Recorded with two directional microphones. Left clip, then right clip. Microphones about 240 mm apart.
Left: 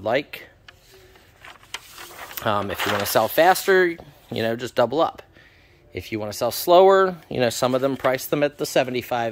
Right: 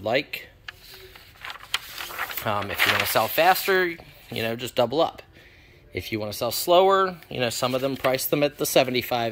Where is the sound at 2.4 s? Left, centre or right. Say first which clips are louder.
Left 1 dB; left.